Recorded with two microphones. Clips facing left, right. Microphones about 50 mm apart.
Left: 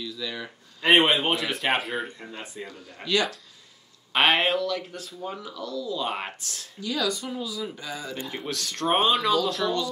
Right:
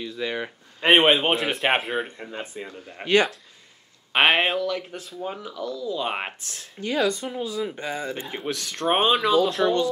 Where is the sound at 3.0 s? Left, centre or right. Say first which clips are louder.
Right 5 dB; right.